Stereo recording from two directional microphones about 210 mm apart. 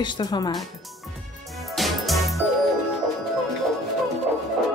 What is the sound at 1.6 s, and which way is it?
Music, centre (ahead or behind).